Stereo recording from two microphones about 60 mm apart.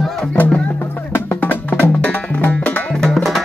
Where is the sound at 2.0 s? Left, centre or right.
Left.